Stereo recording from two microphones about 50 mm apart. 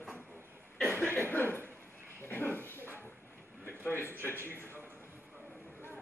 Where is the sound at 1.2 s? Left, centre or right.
Left.